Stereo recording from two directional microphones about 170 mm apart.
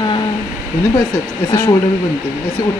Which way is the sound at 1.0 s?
15° left (ahead or behind).